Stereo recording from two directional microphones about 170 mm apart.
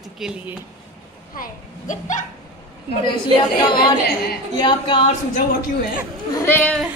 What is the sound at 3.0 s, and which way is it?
Speech, 30° left (ahead or behind).